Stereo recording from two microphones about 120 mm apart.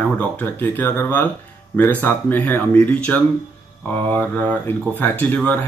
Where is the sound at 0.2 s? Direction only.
15° left (ahead or behind).